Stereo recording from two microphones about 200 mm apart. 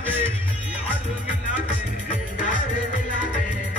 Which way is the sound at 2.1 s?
40° left (ahead or behind).